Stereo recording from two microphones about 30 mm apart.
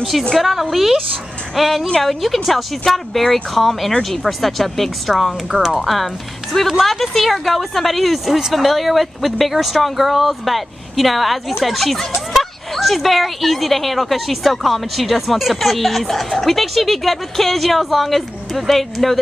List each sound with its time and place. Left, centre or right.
0.4 s speech: centre